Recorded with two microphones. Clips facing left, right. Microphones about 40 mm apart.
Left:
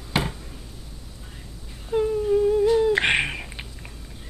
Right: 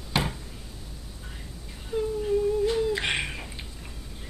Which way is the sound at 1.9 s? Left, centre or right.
Left.